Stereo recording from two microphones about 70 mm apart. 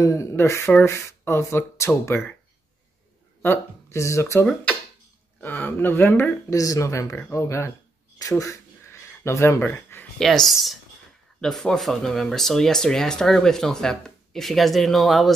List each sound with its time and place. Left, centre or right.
0.0 s speech: left
3.9 s speech: left
5.4 s speech: left
6.5 s speech: left
8.2 s a sound: left
10.1 s speech: centre